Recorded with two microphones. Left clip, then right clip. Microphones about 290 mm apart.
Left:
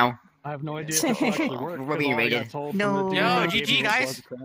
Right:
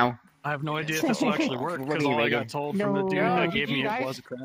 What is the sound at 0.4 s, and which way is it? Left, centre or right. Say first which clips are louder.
Speech: right 6 dB; right.